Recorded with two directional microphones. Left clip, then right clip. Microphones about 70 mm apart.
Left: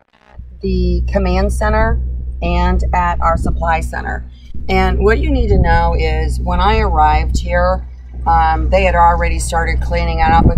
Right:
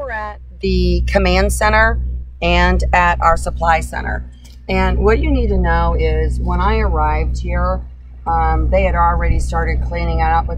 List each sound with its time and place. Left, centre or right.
0.6 s a woman's voice: right
3.9 s a woman's voice: right; by 10.4 s centre